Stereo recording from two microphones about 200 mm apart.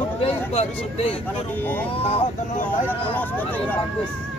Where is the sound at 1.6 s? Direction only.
10° left (ahead or behind).